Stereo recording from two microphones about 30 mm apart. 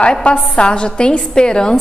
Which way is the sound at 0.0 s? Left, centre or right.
Left.